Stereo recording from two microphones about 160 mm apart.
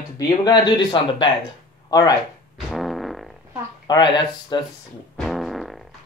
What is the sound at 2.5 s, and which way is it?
Fart, centre (ahead or behind).